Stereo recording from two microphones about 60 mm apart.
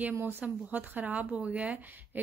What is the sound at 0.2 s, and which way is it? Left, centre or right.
Speech, right.